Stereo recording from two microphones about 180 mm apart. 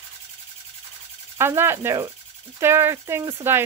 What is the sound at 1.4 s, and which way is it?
Speech, 15° right (ahead or behind).